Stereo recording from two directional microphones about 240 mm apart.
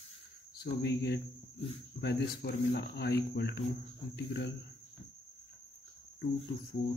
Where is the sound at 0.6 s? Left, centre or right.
Left.